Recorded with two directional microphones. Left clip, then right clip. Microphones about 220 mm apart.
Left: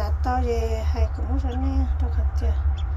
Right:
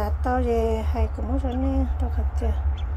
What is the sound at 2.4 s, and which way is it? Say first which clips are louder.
Speech: right 4 dB; 20° right (ahead or behind).